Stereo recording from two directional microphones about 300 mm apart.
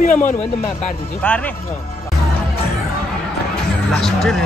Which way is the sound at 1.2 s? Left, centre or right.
Centre.